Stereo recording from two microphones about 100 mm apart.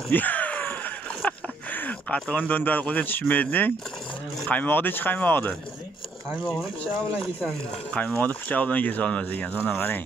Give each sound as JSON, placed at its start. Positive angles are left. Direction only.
{"t": 0.1, "sound": "a sound", "side_deg": 15}
{"t": 4.5, "sound": "speech", "side_deg": 15}
{"t": 7.4, "sound": "speech", "side_deg": 10}